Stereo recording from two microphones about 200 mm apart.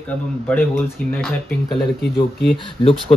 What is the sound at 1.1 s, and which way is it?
Speech, 5° left (ahead or behind).